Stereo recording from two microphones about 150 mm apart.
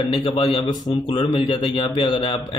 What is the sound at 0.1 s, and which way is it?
A man's voice, 40° left (ahead or behind).